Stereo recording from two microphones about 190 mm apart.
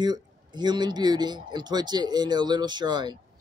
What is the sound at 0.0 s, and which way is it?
Speech, 20° right (ahead or behind).